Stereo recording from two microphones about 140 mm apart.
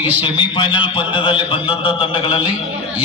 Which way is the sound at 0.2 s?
35° left (ahead or behind).